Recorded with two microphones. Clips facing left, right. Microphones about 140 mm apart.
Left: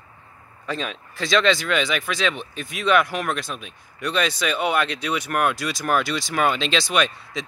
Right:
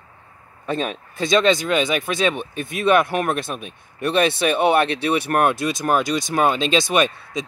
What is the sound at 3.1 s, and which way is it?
Speech, 50° right (ahead or behind).